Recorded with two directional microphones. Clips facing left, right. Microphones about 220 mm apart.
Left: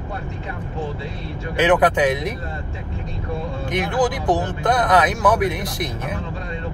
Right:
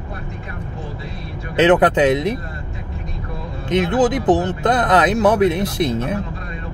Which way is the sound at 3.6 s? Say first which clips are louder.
Right 5 dB; 20° right (ahead or behind).